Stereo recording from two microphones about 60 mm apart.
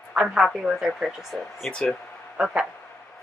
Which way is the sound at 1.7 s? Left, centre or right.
Centre.